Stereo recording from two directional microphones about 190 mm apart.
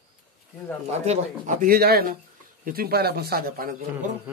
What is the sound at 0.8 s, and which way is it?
Speech, 35° right (ahead or behind).